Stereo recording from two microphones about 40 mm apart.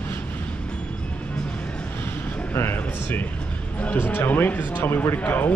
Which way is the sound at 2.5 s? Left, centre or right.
Left.